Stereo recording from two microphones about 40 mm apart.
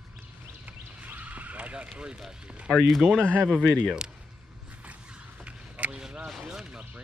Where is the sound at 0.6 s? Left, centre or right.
Right.